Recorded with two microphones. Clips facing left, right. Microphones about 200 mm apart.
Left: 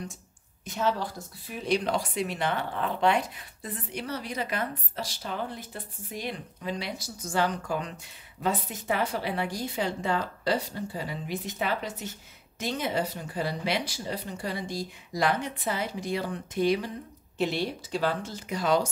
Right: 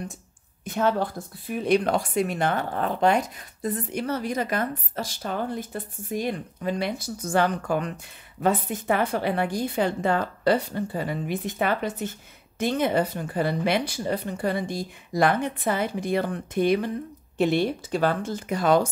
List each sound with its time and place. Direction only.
0.7 s a woman's voice: 55° right (ahead or behind)